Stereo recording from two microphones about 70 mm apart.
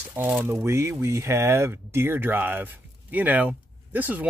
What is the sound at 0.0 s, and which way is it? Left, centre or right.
Speech, right.